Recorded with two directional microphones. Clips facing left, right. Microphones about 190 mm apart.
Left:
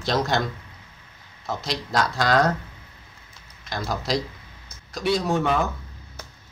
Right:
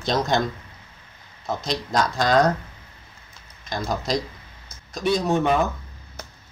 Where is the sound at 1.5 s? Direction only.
20° right (ahead or behind).